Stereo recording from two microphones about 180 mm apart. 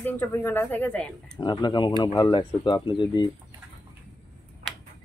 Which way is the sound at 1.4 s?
25° left (ahead or behind).